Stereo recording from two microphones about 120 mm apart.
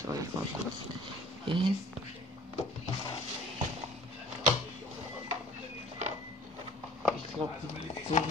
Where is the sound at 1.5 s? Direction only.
40° right (ahead or behind).